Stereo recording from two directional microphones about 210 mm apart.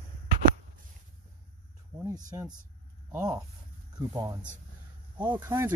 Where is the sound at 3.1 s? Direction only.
10° right (ahead or behind).